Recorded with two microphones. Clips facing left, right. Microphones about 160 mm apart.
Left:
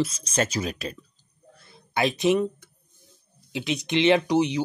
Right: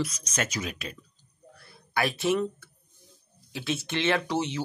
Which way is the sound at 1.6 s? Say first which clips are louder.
Left 3 dB; 20° left (ahead or behind).